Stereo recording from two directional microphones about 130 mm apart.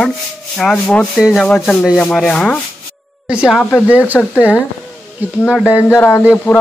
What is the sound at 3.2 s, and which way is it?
Speech, 5° right (ahead or behind).